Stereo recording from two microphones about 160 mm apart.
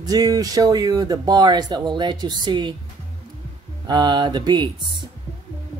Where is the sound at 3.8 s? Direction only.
25° right (ahead or behind).